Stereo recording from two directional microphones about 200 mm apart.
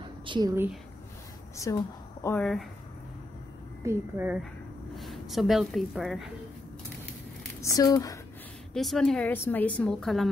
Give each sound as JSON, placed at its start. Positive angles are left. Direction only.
{"t": 0.0, "sound": "a woman's voice", "side_deg": -25}
{"t": 2.2, "sound": "a woman's voice", "side_deg": 5}
{"t": 3.8, "sound": "a woman's voice", "side_deg": -10}
{"t": 4.9, "sound": "a woman's voice", "side_deg": 0}
{"t": 7.6, "sound": "speech", "side_deg": 15}
{"t": 8.7, "sound": "a woman's voice", "side_deg": 0}